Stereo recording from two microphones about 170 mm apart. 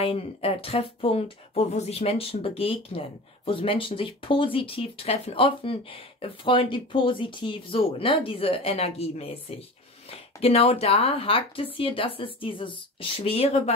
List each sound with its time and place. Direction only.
0.0 s speech: 35° left (ahead or behind)